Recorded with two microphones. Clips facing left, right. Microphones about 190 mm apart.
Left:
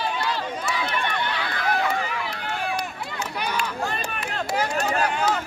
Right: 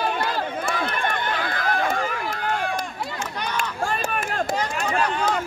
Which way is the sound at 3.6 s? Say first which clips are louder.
Right 2 dB; 50° right (ahead or behind).